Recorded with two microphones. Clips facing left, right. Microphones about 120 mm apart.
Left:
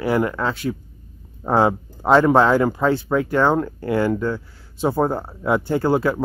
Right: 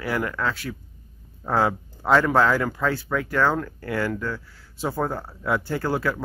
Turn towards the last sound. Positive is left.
turn(degrees=20)  # may be behind; listen again after turning